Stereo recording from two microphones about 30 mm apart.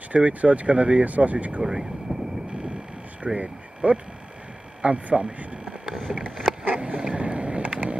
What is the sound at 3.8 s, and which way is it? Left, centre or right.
Speech, right.